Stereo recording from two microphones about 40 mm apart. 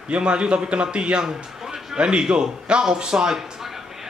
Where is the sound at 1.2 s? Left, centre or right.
Centre.